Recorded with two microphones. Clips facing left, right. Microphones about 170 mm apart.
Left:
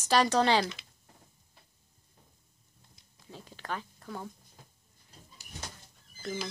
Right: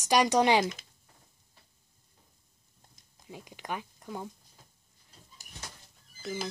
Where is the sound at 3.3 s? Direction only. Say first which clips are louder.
Right 1 dB; 15° right (ahead or behind).